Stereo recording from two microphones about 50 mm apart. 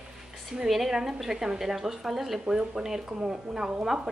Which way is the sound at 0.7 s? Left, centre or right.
Centre.